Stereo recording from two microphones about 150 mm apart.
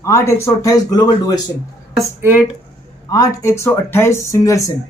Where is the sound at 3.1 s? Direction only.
20° left (ahead or behind).